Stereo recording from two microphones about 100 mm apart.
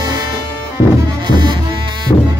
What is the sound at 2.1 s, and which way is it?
Music, 35° left (ahead or behind).